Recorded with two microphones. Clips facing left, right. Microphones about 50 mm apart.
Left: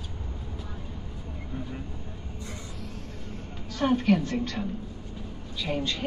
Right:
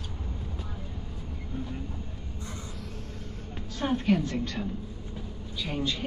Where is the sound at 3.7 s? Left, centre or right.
Left.